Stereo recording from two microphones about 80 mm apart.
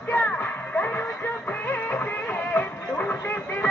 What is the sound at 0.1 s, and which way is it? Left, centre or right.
Music, left.